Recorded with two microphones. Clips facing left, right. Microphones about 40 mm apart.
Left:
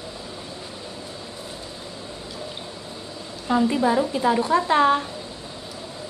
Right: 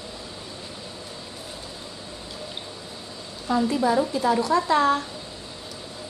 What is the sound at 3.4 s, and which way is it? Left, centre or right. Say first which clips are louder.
A woman's voice: left 2 dB; left.